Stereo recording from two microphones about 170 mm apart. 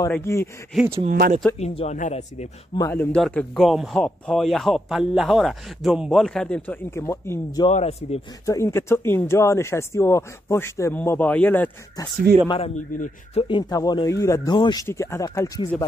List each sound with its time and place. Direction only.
0.1 s speech: 15° left (ahead or behind)
0.7 s speech: 15° right (ahead or behind)
1.6 s speech: 40° left (ahead or behind)
2.8 s speech: 10° left (ahead or behind)
7.7 s speech: 40° left (ahead or behind)
8.5 s speech: 20° left (ahead or behind)
12.4 s speech: 35° left (ahead or behind)